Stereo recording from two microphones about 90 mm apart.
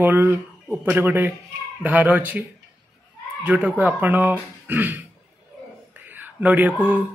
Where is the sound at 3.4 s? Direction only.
15° right (ahead or behind).